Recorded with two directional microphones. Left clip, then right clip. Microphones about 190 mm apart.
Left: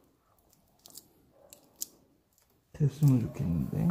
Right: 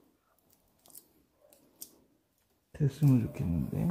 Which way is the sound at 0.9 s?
15° right (ahead or behind).